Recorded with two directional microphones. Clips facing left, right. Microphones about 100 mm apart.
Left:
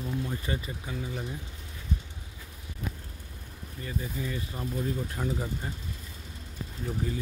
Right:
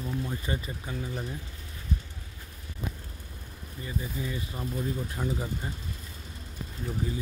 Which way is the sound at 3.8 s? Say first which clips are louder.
Even; 10° right (ahead or behind).